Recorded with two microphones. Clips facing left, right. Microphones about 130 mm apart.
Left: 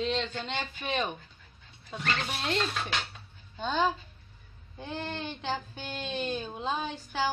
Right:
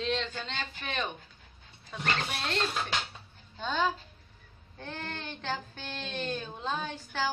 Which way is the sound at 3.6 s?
Centre (ahead or behind).